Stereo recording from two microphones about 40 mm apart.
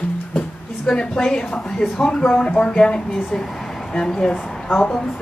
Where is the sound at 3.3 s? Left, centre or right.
Centre.